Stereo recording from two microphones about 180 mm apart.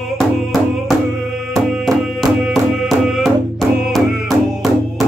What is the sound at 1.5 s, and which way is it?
Music, centre (ahead or behind).